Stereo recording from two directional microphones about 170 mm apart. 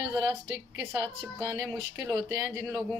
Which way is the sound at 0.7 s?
10° right (ahead or behind).